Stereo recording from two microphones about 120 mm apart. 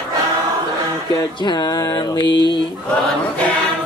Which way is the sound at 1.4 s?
35° left (ahead or behind).